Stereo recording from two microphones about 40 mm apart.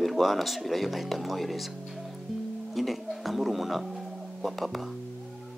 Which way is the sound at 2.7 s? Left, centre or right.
Centre.